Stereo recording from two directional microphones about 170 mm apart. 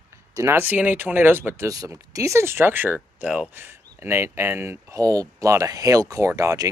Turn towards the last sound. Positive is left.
turn(degrees=-20)  # may be behind; listen again after turning